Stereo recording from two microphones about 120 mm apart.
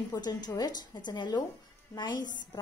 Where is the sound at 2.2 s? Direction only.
90° left.